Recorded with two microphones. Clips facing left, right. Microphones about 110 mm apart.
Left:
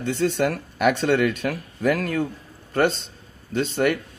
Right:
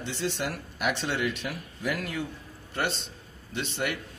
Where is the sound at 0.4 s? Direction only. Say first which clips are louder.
Left 10 dB; 50° left (ahead or behind).